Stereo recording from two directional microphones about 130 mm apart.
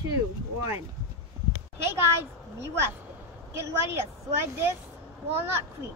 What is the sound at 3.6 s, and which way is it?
Speech, 20° right (ahead or behind).